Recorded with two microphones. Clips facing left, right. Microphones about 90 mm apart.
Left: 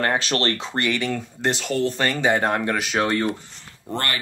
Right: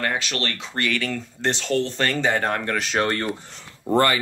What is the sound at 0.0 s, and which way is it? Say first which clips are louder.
Speech: left 4 dB; 35° left (ahead or behind).